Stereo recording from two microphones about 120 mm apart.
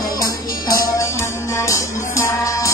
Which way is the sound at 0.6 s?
25° left (ahead or behind).